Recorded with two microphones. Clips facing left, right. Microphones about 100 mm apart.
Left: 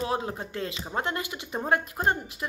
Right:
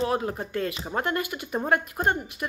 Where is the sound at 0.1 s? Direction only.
25° left (ahead or behind).